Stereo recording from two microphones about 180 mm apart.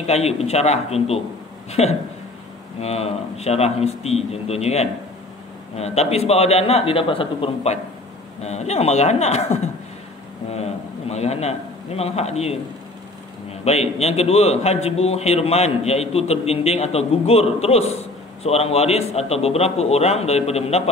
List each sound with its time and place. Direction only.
0.0 s a man's voice: 35° left (ahead or behind)
13.7 s a man's voice: 35° left (ahead or behind)